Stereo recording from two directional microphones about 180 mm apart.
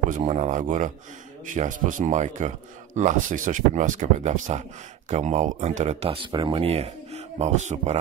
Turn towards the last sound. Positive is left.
turn(degrees=-40)  # may be behind; listen again after turning